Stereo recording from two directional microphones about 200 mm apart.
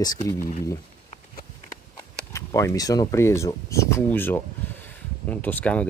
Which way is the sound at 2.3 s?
15° left (ahead or behind).